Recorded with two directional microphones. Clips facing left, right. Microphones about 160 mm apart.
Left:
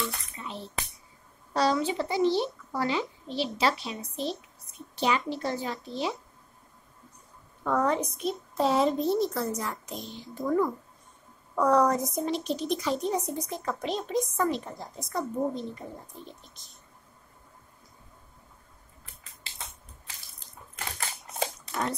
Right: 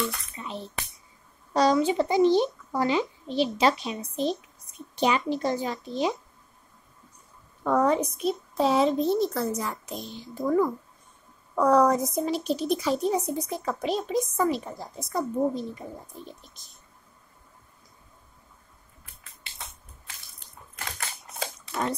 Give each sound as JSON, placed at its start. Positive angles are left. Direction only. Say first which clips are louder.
{"t": 1.5, "sound": "speech", "louder": "right 4 dB", "side_deg": -15}
{"t": 7.6, "sound": "speech", "louder": "right 4 dB", "side_deg": -10}